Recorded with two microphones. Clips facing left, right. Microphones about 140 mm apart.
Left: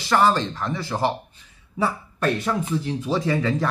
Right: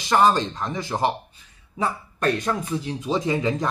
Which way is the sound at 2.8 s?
20° right (ahead or behind).